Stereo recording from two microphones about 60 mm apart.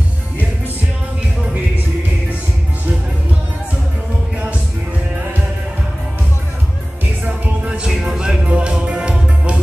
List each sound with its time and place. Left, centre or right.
7.2 s music: right
7.8 s music: centre